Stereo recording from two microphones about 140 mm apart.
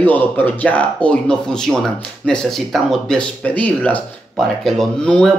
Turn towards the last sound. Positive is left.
turn(degrees=5)  # may be behind; listen again after turning